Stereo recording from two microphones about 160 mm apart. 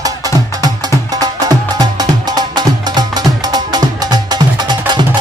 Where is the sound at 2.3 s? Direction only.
25° right (ahead or behind).